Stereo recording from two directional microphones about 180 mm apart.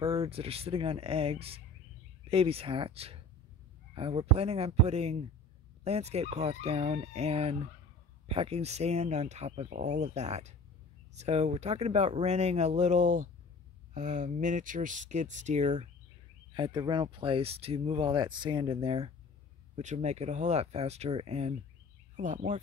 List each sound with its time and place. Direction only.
0.0 s speech: 35° right (ahead or behind)
16.5 s speech: 25° right (ahead or behind); by 22.6 s 40° right (ahead or behind)